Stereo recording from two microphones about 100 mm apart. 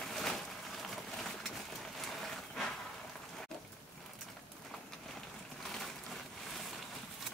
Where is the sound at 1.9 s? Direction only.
Centre (ahead or behind).